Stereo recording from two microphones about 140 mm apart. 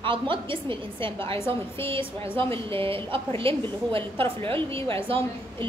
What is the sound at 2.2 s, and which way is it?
A woman's voice, 40° right (ahead or behind).